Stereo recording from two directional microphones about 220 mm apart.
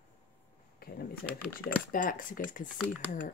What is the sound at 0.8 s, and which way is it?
Speech, 45° left (ahead or behind).